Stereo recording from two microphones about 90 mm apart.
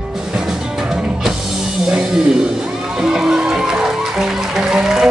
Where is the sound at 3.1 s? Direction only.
5° right (ahead or behind).